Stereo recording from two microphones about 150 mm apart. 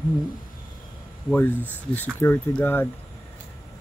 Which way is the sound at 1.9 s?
15° left (ahead or behind).